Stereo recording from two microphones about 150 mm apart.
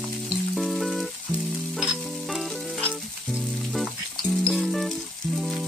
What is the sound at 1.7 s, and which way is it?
Stir, centre (ahead or behind).